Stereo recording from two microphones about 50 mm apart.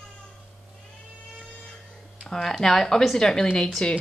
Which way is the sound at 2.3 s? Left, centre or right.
Centre.